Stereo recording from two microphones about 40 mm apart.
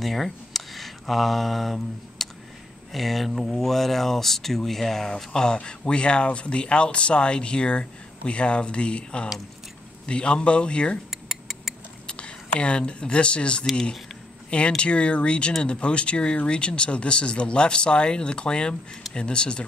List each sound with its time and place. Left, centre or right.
0.0 s speech: centre; by 11.0 s left
11.1 s tick: centre
12.1 s speech: left
14.8 s speech: left